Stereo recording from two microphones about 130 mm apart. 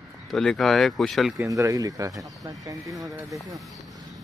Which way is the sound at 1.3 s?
25° right (ahead or behind).